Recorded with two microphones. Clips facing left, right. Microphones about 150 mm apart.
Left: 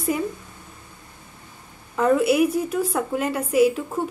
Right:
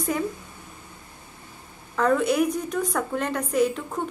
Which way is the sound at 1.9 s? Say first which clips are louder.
Left 3 dB; 5° left (ahead or behind).